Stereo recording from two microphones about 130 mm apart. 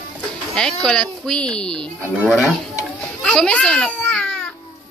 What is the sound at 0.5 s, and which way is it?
Speech, 5° left (ahead or behind).